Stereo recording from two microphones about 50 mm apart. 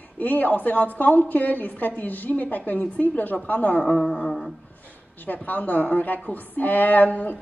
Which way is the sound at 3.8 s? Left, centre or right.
Left.